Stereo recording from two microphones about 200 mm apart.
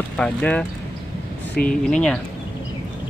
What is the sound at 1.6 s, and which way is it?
Speech, 50° left (ahead or behind).